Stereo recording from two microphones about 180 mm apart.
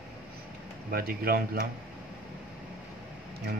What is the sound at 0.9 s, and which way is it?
Speech, 55° right (ahead or behind).